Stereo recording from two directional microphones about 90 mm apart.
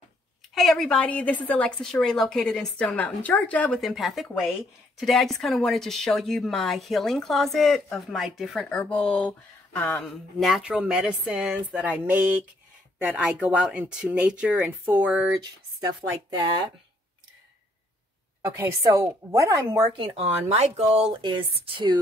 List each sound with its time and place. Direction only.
0.6 s a woman's voice: 5° left (ahead or behind)
3.8 s a woman's voice: centre (ahead or behind)
8.6 s a woman's voice: 15° left (ahead or behind)
10.0 s speech: 5° right (ahead or behind)
15.4 s speech: 50° right (ahead or behind)
18.4 s a woman's voice: 30° right (ahead or behind)
20.0 s speech: 65° right (ahead or behind)